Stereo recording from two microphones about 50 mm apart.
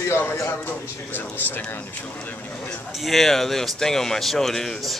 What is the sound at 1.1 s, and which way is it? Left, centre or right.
Speech, left.